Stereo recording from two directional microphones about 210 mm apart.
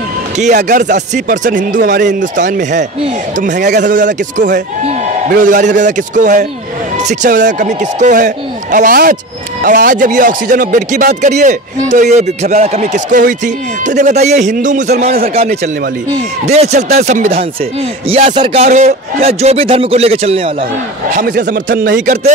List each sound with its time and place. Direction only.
0.4 s a man's voice: 35° right (ahead or behind)
21.1 s speech: 40° right (ahead or behind)